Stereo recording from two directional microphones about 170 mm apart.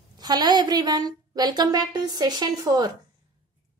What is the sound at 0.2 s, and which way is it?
A woman's voice, 25° right (ahead or behind).